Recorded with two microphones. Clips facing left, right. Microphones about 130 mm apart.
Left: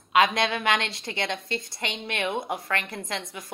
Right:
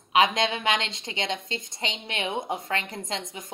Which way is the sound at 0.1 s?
20° right (ahead or behind).